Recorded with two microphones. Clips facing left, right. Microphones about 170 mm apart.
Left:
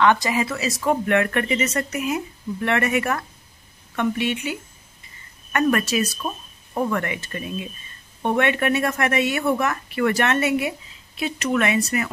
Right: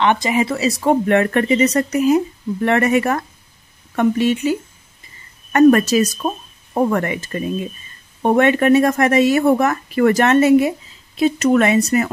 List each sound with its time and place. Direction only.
0.0 s speech: 20° right (ahead or behind)